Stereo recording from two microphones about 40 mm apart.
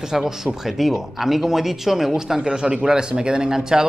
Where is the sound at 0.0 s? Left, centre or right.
Centre.